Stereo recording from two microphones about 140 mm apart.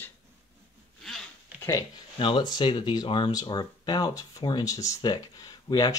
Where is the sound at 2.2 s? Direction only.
35° left (ahead or behind).